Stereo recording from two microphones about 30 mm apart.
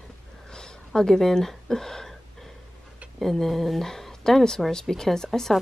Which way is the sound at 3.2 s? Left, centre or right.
Centre.